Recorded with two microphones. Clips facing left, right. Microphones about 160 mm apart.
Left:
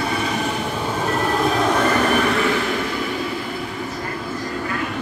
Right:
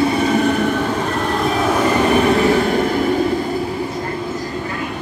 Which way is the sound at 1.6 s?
5° right (ahead or behind).